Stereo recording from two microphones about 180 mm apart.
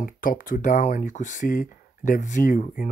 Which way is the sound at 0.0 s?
50° left (ahead or behind).